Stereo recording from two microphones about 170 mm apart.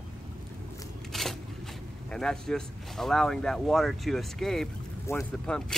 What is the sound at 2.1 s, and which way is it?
Speech, 5° left (ahead or behind).